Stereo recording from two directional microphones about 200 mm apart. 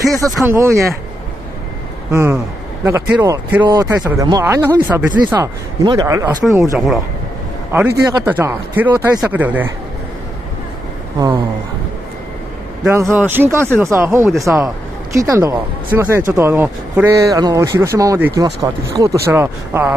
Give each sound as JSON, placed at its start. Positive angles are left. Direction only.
{"t": 0.5, "sound": "speech", "side_deg": -15}
{"t": 2.0, "sound": "speech", "side_deg": -15}
{"t": 12.8, "sound": "speech", "side_deg": -10}